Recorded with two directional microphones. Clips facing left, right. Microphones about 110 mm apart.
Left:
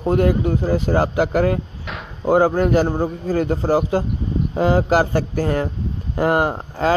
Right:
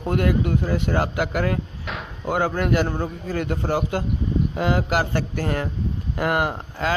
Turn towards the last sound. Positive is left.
turn(degrees=30)  # may be behind; listen again after turning